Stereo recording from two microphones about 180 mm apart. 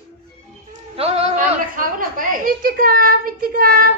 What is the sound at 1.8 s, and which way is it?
A woman's voice, 50° right (ahead or behind).